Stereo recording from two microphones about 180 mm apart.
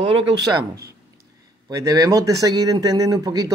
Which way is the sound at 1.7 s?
20° right (ahead or behind).